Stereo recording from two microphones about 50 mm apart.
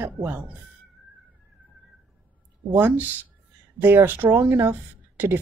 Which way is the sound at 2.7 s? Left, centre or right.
Right.